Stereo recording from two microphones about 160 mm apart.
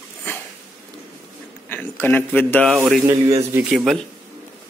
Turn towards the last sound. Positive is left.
turn(degrees=-5)  # may be behind; listen again after turning